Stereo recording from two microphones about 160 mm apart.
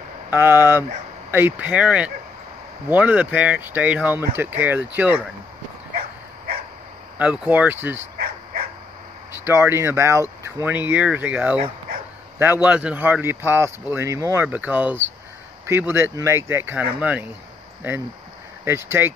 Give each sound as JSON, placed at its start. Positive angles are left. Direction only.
{"t": 0.3, "sound": "speech", "side_deg": -15}
{"t": 5.9, "sound": "dog", "side_deg": -70}
{"t": 7.2, "sound": "speech", "side_deg": -10}
{"t": 9.4, "sound": "speech", "side_deg": -15}
{"t": 18.6, "sound": "speech", "side_deg": -15}